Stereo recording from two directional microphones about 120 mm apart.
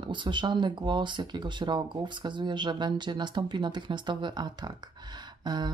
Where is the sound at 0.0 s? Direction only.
40° right (ahead or behind).